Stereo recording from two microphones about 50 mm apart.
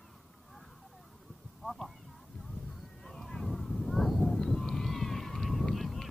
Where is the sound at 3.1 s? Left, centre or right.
Centre.